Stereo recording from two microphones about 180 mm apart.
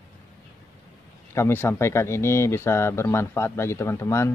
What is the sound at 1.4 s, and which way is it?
Speech, 15° left (ahead or behind).